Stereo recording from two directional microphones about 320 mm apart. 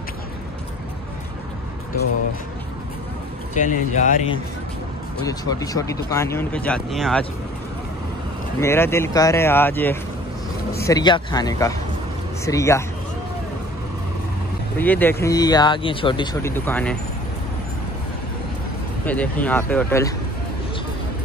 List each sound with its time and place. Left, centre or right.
3.5 s speech: left
5.2 s speech: centre
8.5 s speech: centre
14.8 s speech: centre
19.0 s speech: centre